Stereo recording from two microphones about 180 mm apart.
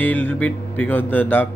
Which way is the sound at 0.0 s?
10° left (ahead or behind).